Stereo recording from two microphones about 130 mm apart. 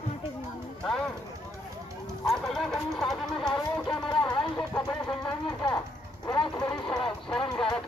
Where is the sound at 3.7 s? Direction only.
5° left (ahead or behind).